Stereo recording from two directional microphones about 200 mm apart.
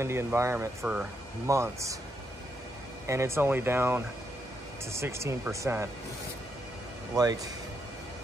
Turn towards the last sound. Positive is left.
turn(degrees=-20)  # may be behind; listen again after turning